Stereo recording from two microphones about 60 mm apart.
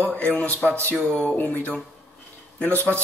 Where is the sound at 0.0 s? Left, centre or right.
Left.